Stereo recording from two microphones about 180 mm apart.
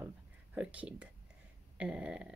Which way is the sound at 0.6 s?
5° right (ahead or behind).